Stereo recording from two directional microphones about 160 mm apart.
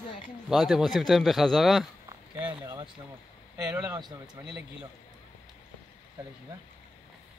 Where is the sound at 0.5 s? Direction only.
Centre (ahead or behind).